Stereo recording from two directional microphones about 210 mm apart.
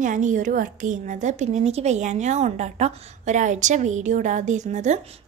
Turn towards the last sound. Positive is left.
turn(degrees=-35)  # may be behind; listen again after turning